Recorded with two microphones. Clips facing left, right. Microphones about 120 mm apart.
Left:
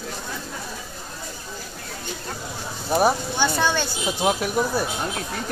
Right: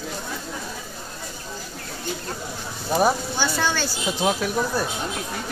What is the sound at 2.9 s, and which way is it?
Speech, 5° left (ahead or behind).